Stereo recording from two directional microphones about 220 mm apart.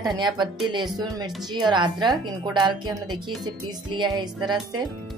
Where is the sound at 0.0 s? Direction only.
20° right (ahead or behind).